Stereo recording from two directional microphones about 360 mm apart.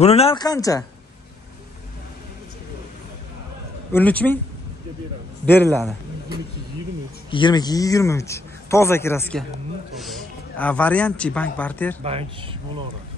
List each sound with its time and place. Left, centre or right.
0.0 s a man's voice: centre
3.9 s a man's voice: centre
5.4 s a man's voice: centre
7.2 s a man's voice: centre
12.0 s speech: centre